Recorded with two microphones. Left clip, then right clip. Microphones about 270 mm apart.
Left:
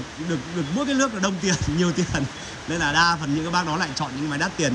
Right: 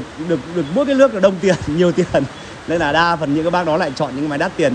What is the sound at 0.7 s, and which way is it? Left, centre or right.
A man's voice, centre.